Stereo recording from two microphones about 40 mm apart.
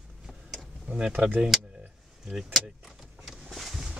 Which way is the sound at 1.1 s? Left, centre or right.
Right.